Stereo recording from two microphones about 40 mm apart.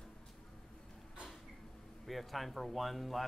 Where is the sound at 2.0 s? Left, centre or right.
Centre.